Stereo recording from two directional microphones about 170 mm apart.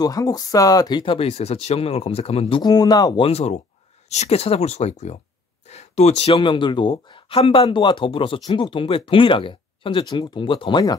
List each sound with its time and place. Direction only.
0.0 s speech: 20° left (ahead or behind)
3.3 s speech: 40° left (ahead or behind)